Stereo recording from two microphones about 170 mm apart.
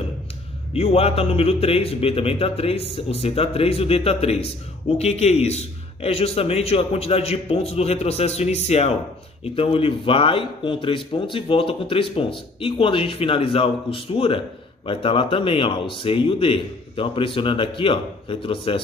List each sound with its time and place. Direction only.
0.7 s a man's voice: 35° left (ahead or behind)